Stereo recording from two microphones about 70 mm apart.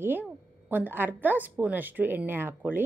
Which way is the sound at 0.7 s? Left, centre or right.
Right.